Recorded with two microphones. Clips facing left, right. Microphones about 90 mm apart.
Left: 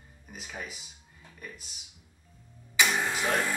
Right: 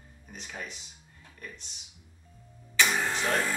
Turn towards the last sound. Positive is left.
turn(degrees=15)  # may be behind; listen again after turning